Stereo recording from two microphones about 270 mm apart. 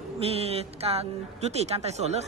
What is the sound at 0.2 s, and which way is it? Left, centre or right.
Speech, right.